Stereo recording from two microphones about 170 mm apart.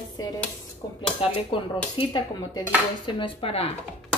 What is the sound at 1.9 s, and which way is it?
Speech, 30° left (ahead or behind).